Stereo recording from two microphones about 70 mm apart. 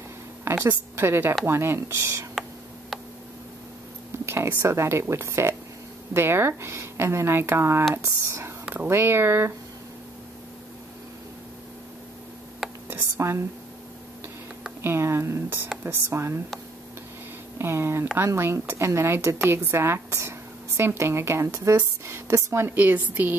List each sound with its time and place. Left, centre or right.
0.7 s a woman's voice: right
4.1 s a woman's voice: right
12.6 s a sound: centre
13.2 s a woman's voice: right
14.8 s a woman's voice: right
17.6 s a woman's voice: right
22.8 s speech: right